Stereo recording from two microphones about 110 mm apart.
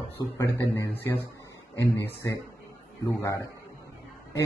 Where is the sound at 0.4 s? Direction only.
25° left (ahead or behind).